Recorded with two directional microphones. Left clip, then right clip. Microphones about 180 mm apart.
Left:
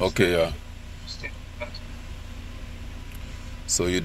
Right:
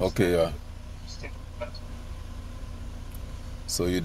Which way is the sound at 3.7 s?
15° right (ahead or behind).